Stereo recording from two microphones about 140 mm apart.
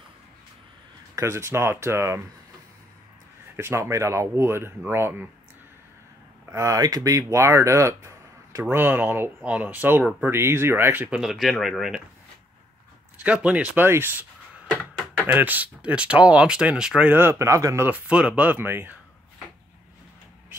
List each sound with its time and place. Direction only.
1.1 s speech: 20° right (ahead or behind)
3.5 s speech: 20° right (ahead or behind)
6.5 s speech: 20° right (ahead or behind); by 12.0 s centre (ahead or behind)
13.2 s speech: 10° right (ahead or behind)
14.7 s a sound: 10° left (ahead or behind)
15.3 s speech: 10° right (ahead or behind)